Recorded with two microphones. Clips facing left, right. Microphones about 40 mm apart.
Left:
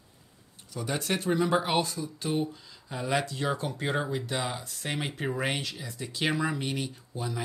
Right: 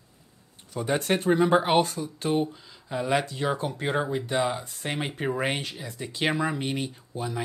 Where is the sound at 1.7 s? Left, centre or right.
Right.